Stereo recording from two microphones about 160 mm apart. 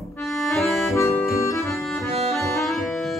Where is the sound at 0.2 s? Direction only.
Centre (ahead or behind).